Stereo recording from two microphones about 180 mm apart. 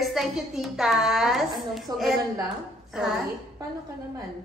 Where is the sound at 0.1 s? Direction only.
Centre (ahead or behind).